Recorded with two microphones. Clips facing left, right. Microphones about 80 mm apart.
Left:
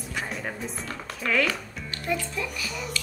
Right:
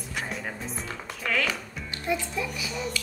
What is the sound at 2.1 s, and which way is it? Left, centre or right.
Speech, centre.